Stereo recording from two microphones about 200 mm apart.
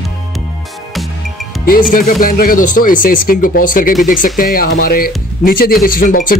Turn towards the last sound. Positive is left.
turn(degrees=45)  # may be behind; listen again after turning